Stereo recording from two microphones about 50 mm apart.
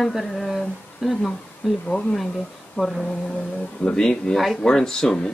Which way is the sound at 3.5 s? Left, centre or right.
Centre.